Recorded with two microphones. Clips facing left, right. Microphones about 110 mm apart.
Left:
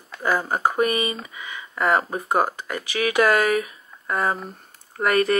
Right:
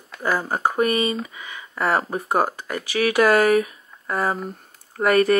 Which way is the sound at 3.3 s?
25° right (ahead or behind).